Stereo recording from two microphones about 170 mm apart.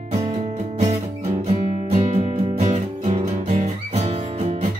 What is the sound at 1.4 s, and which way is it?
Music, 45° right (ahead or behind).